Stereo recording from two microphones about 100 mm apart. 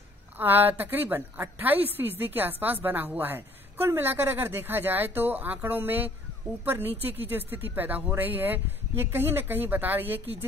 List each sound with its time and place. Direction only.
0.4 s a woman's voice: 20° right (ahead or behind)